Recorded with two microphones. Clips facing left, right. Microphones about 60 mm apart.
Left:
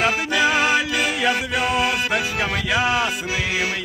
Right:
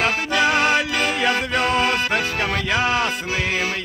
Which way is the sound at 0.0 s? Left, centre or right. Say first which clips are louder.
Even; centre.